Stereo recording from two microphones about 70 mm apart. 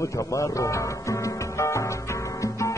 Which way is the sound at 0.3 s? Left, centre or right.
Left.